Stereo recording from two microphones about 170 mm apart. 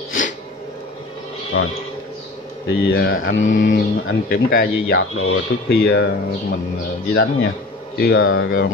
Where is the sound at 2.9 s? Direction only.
65° left (ahead or behind).